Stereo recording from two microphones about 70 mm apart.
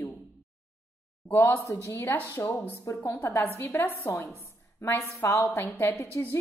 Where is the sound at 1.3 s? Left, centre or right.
Left.